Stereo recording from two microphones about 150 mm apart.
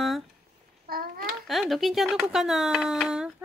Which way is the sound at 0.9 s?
75° right (ahead or behind).